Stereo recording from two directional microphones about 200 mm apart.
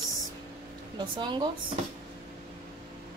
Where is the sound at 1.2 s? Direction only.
20° right (ahead or behind).